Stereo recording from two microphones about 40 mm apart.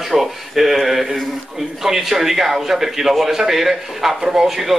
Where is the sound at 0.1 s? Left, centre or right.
Centre.